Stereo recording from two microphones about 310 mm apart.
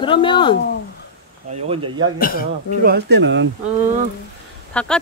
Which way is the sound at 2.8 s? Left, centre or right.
Right.